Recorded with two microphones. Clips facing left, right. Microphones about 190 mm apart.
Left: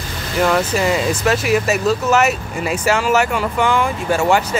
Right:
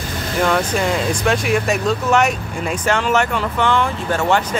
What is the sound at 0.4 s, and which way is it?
Speech, 5° left (ahead or behind).